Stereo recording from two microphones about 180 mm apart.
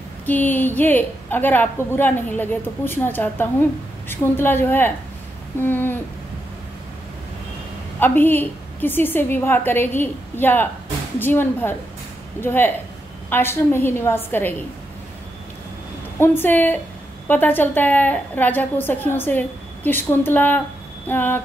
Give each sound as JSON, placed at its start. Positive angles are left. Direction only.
{"t": 0.3, "sound": "a woman's voice", "side_deg": 10}
{"t": 8.0, "sound": "a woman's voice", "side_deg": 10}
{"t": 16.2, "sound": "a woman's voice", "side_deg": 10}